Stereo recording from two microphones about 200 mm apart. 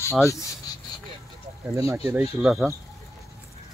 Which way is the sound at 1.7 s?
15° right (ahead or behind).